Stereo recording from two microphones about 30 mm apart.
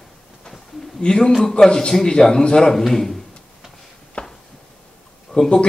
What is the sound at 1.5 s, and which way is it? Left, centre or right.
A man's voice, left.